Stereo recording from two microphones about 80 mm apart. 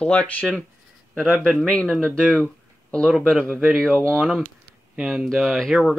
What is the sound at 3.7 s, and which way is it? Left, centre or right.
Speech, centre.